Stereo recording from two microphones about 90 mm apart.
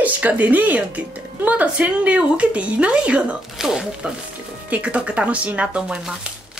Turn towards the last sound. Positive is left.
turn(degrees=-10)  # may be behind; listen again after turning